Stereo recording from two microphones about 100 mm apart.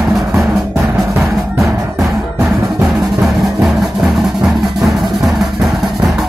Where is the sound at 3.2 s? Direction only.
Centre (ahead or behind).